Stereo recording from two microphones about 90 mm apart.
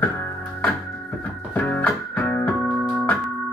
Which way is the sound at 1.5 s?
15° left (ahead or behind).